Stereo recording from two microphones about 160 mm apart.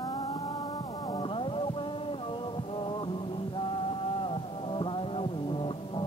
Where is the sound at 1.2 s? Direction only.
35° left (ahead or behind).